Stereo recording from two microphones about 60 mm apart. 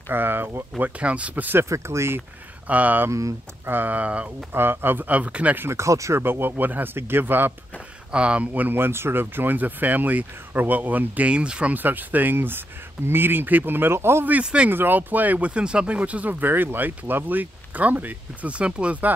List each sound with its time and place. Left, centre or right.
0.1 s speech: right
0.7 s speech: right
1.6 s speech: right
2.7 s speech: right
3.1 s speech: right
3.6 s speech: right
4.5 s speech: right
5.6 s speech: right
6.2 s speech: right
8.1 s speech: centre
8.7 s speech: right; by 11.7 s centre
11.7 s speech: right
14.4 s speech: centre
14.7 s speech: right